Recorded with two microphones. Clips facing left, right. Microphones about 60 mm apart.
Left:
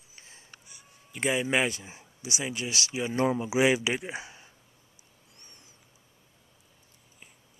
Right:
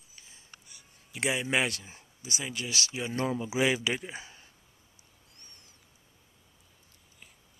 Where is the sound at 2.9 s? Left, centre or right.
Centre.